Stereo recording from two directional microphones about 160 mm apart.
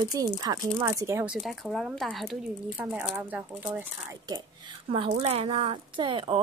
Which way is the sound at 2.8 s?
10° right (ahead or behind).